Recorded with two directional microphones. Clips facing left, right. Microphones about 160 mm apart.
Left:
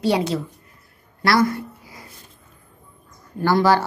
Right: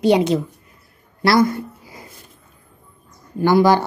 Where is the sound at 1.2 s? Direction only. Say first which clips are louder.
Right 3 dB; 20° right (ahead or behind).